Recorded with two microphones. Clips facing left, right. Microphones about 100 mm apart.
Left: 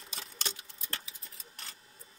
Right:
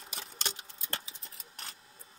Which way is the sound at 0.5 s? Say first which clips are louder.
Right 3 dB; 30° right (ahead or behind).